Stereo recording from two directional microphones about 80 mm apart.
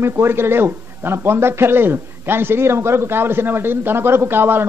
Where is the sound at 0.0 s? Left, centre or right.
Right.